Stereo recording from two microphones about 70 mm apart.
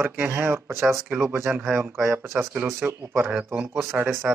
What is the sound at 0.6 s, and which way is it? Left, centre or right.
Speech, right.